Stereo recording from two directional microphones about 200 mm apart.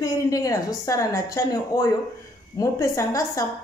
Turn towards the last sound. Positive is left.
turn(degrees=15)  # may be behind; listen again after turning